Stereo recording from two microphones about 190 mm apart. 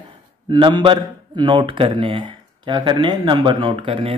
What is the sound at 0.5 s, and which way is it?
A man's voice, 25° right (ahead or behind).